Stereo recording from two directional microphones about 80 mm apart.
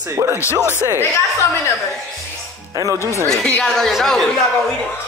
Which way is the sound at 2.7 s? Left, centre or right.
Right.